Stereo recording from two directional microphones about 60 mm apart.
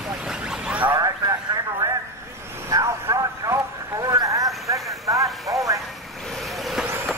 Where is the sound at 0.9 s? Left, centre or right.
Right.